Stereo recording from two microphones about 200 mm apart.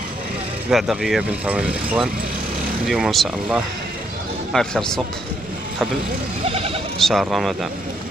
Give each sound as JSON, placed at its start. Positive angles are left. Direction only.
{"t": 0.7, "sound": "speech", "side_deg": 0}
{"t": 6.4, "sound": "goat", "side_deg": -30}
{"t": 7.0, "sound": "speech", "side_deg": 0}